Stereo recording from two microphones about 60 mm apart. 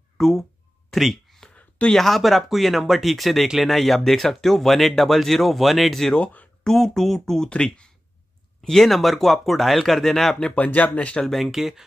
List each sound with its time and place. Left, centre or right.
0.2 s a sound: centre
1.5 s a sound: centre
2.0 s speech: centre
6.1 s speech: left
6.6 s speech: centre
8.6 s speech: centre
10.5 s speech: left
11.2 s speech: centre